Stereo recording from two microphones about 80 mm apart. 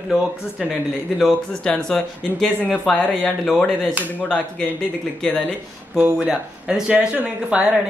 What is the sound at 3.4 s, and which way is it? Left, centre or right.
Speech, centre.